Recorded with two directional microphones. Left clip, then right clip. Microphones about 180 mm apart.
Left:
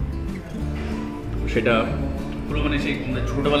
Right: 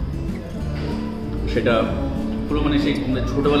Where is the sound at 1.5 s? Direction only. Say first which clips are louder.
Right 1 dB; 20° left (ahead or behind).